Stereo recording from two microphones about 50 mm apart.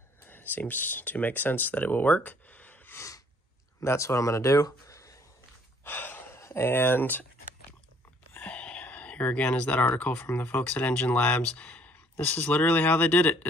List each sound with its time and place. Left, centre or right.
0.2 s speech: left
3.8 s speech: left
5.9 s gasp: left
6.3 s speech: left
8.4 s speech: left